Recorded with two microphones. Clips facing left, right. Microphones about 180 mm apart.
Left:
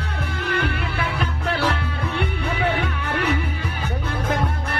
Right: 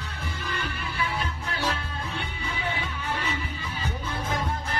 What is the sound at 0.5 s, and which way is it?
Music, 70° left (ahead or behind).